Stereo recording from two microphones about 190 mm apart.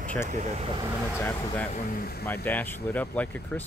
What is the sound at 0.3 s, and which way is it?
Speech, 40° right (ahead or behind).